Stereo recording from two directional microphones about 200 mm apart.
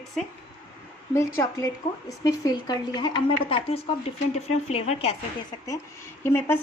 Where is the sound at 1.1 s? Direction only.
15° left (ahead or behind); by 5.1 s 30° left (ahead or behind).